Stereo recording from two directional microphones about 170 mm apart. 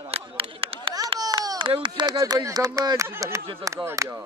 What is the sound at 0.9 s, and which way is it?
Speech, 25° right (ahead or behind).